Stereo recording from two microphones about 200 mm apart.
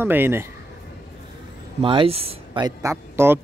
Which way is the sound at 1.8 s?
25° right (ahead or behind).